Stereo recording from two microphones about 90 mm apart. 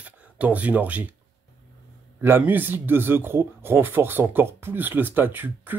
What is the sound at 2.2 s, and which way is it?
Speech, 20° right (ahead or behind).